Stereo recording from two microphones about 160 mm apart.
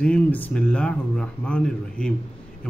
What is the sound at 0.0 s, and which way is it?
A man's voice, 10° left (ahead or behind).